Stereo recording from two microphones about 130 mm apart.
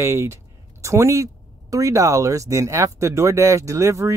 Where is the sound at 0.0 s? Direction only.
20° right (ahead or behind).